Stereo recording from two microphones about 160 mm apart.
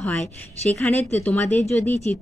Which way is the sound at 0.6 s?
45° left (ahead or behind).